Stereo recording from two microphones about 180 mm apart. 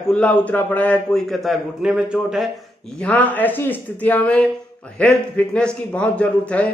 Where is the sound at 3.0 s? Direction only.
10° left (ahead or behind).